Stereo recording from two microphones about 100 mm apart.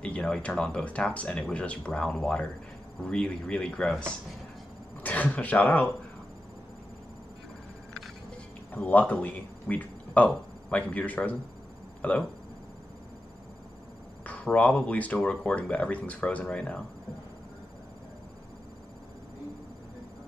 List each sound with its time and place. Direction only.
0.0 s speech: 10° left (ahead or behind)
8.7 s speech: 15° left (ahead or behind)
14.2 s speech: 10° left (ahead or behind)